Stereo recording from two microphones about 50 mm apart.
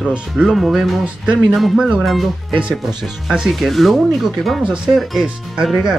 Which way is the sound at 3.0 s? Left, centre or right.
Centre.